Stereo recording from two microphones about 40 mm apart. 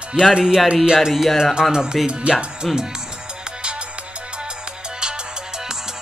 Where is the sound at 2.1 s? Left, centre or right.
Right.